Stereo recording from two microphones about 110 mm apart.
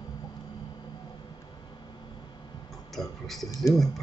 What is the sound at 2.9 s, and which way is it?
Music, centre (ahead or behind).